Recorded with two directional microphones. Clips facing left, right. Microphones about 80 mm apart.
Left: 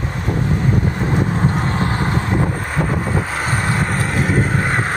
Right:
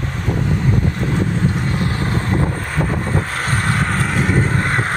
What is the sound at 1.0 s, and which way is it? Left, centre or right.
Vehicle, left.